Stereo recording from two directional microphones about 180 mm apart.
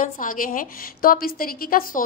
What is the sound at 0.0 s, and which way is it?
A woman's voice, 50° left (ahead or behind).